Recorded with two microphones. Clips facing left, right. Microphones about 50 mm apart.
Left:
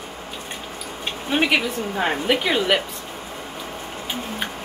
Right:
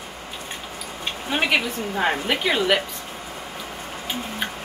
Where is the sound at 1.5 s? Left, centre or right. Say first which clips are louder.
Left 1 dB; centre.